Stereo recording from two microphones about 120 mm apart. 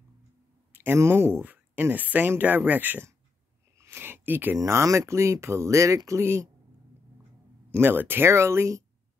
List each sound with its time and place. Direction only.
0.7 s speech: 20° right (ahead or behind)
7.7 s speech: 15° right (ahead or behind)